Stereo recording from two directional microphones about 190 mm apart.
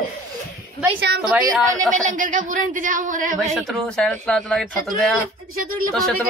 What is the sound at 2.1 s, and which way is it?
Speech, 40° right (ahead or behind).